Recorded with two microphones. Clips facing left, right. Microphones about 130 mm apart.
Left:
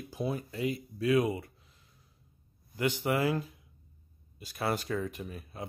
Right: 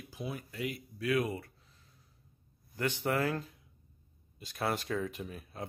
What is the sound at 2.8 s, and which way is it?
Speech, 10° left (ahead or behind).